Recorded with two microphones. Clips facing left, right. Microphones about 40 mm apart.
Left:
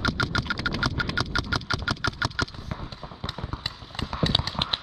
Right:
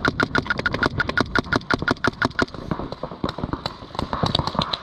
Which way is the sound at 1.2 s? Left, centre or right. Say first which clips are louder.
Right 7 dB; right.